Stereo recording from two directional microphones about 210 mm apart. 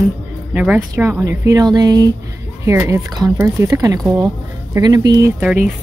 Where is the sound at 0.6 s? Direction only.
5° right (ahead or behind).